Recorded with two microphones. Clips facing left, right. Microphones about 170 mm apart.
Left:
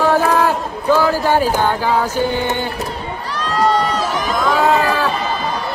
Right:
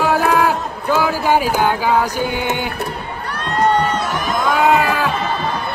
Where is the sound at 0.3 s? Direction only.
15° right (ahead or behind).